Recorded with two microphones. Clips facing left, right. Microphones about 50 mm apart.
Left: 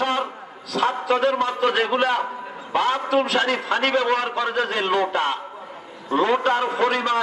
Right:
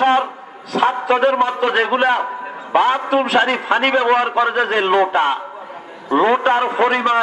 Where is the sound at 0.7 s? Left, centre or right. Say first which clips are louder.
Right 5 dB; right.